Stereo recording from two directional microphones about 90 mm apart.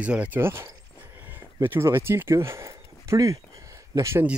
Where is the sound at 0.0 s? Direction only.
15° right (ahead or behind).